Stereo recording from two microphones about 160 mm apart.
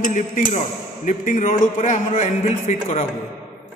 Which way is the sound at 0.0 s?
55° left (ahead or behind).